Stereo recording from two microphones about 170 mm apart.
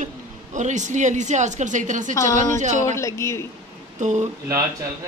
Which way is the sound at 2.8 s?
15° left (ahead or behind).